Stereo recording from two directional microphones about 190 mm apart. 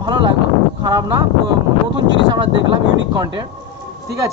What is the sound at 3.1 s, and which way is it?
Speech, 20° right (ahead or behind).